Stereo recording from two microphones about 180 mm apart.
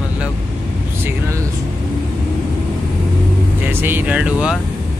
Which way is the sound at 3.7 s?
10° right (ahead or behind).